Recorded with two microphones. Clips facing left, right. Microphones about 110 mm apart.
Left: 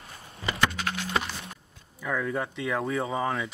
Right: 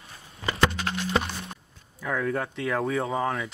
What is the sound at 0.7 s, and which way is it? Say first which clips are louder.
Music: right 2 dB; 30° right (ahead or behind).